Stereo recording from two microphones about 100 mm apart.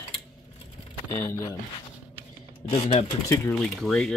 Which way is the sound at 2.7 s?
80° left.